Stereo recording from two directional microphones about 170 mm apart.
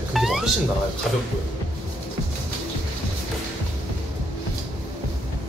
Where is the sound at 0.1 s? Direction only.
Centre (ahead or behind).